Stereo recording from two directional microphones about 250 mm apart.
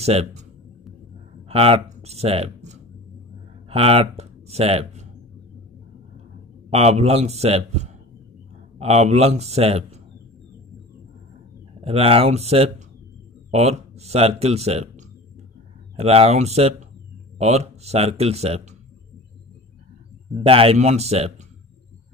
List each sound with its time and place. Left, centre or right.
0.0 s speech: right
1.5 s speech: right
6.7 s speech: right
11.8 s speech: right
20.4 s speech: right